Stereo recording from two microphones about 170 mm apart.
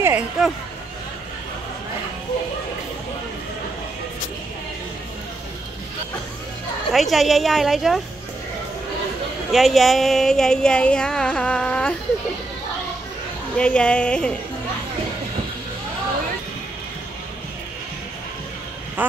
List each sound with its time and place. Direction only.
0.0 s speech: 10° right (ahead or behind)
6.9 s speech: centre (ahead or behind)
9.5 s speech: centre (ahead or behind)
13.6 s speech: 5° left (ahead or behind)
19.0 s speech: 10° right (ahead or behind)